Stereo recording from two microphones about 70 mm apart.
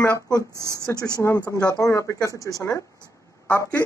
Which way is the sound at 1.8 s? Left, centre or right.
Left.